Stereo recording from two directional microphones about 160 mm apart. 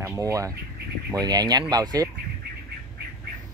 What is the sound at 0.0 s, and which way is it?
Speech, 20° right (ahead or behind).